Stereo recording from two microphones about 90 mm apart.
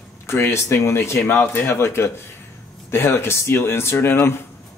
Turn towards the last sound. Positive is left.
turn(degrees=25)  # may be behind; listen again after turning